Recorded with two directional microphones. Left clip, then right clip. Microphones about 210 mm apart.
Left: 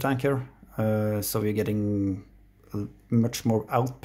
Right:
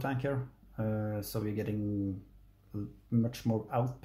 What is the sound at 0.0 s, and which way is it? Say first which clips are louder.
Speech: left 9 dB; 35° left (ahead or behind).